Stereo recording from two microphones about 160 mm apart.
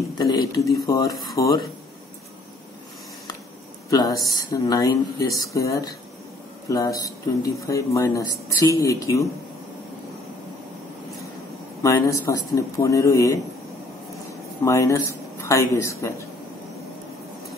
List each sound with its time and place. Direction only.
0.2 s a sound: 25° left (ahead or behind)
0.8 s speech: 20° left (ahead or behind)
3.9 s speech: 20° left (ahead or behind)
11.8 s speech: 20° left (ahead or behind)
14.6 s speech: 20° left (ahead or behind)